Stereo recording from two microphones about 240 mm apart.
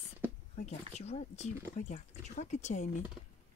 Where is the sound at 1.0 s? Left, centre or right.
Left.